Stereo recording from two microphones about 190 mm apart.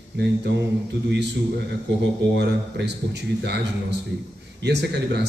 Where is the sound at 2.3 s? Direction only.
65° right (ahead or behind).